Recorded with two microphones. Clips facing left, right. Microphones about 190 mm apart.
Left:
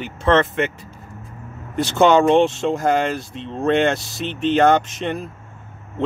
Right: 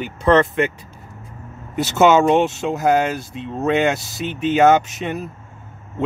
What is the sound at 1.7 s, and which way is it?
Speech, 5° right (ahead or behind).